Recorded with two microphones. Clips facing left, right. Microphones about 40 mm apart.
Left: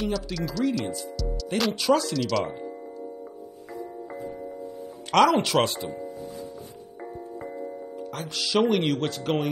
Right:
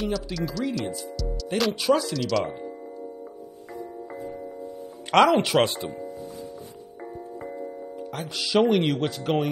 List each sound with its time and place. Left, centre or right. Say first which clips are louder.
0.0 s speech: right 1 dB; centre
5.1 s speech: right 1 dB; centre
8.1 s speech: right 2 dB; centre
9.0 s speech: right 1 dB; centre